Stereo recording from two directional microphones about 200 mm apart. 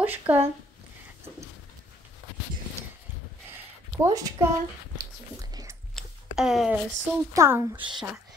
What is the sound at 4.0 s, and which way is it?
Speech, 15° right (ahead or behind).